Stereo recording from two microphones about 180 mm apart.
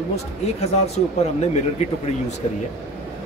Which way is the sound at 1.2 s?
35° left (ahead or behind).